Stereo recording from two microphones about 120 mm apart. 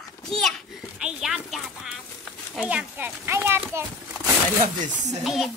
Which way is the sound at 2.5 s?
10° right (ahead or behind).